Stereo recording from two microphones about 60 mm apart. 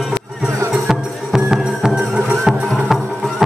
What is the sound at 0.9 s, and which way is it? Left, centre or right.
Music, centre.